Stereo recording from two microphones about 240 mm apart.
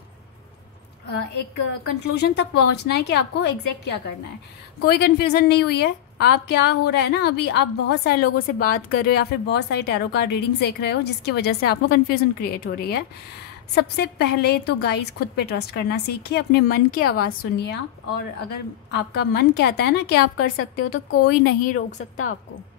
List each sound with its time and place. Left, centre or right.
2.0 s a woman's voice: left
20.3 s a woman's voice: left
21.4 s a woman's voice: left